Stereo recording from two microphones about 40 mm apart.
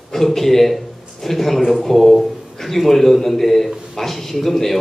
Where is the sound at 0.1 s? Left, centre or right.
Centre.